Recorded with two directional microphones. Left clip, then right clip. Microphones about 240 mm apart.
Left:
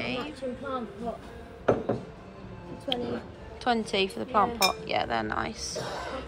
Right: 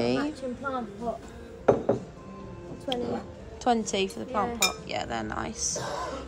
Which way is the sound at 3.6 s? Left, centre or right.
Centre.